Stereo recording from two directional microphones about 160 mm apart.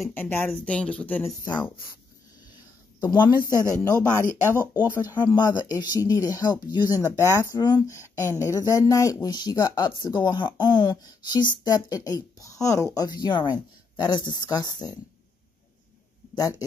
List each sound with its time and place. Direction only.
0.0 s speech: 15° left (ahead or behind)
1.4 s speech: 25° left (ahead or behind)
3.0 s speech: 25° left (ahead or behind)
16.3 s speech: 25° left (ahead or behind)